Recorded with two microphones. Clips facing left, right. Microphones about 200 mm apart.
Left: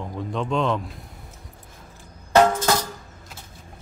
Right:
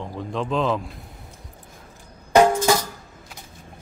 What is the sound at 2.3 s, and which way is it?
Music, 10° right (ahead or behind).